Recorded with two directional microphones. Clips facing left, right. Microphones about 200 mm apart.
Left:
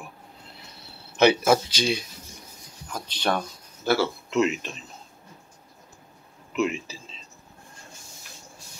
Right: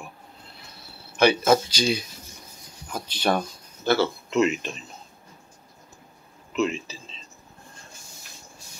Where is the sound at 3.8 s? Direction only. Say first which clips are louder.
Right 1 dB; 5° left (ahead or behind).